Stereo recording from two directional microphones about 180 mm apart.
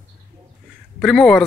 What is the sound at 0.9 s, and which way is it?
Speech, centre (ahead or behind).